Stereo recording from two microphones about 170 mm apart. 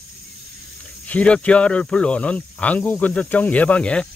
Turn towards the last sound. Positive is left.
turn(degrees=5)  # may be behind; listen again after turning